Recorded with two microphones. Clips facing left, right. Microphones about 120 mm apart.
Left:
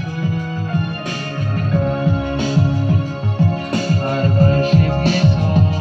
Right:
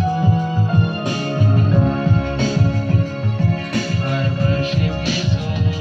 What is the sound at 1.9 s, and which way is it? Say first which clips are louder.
Music: even; 10° left (ahead or behind).